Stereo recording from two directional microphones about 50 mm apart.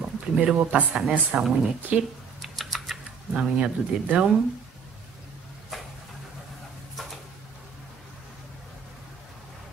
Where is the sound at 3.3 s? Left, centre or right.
Right.